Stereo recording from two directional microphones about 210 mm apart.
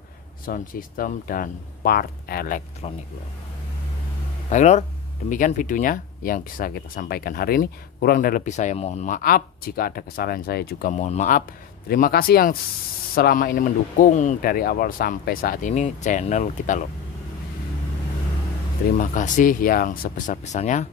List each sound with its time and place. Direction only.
0.5 s speech: 40° left (ahead or behind)
4.5 s speech: 35° left (ahead or behind)
18.9 s speech: 35° left (ahead or behind)